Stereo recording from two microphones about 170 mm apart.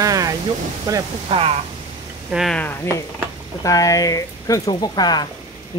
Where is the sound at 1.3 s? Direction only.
35° right (ahead or behind).